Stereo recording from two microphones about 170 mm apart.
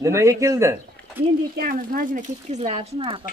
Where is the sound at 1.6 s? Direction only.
55° right (ahead or behind); by 3.2 s 35° right (ahead or behind).